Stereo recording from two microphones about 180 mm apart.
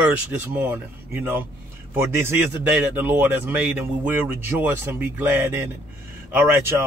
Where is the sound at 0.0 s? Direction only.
10° right (ahead or behind).